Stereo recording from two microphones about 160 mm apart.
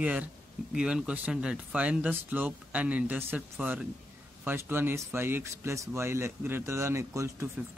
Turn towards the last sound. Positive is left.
turn(degrees=-20)  # may be behind; listen again after turning